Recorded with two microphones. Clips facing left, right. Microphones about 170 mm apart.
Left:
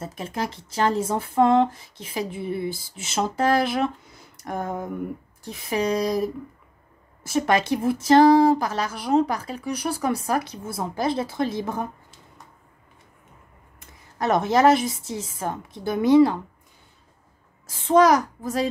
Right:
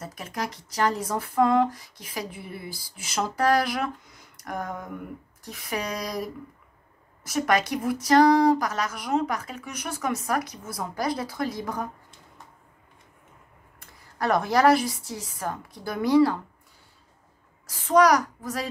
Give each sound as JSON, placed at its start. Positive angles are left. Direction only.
{"t": 0.0, "sound": "speech", "side_deg": 25}
{"t": 4.4, "sound": "a sound", "side_deg": 25}
{"t": 5.4, "sound": "speech", "side_deg": 25}
{"t": 13.7, "sound": "speech", "side_deg": 20}
{"t": 17.6, "sound": "speech", "side_deg": 25}